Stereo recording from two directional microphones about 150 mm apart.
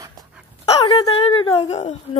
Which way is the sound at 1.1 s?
35° left (ahead or behind).